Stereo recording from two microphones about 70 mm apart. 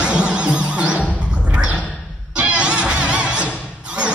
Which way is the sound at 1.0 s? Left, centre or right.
Centre.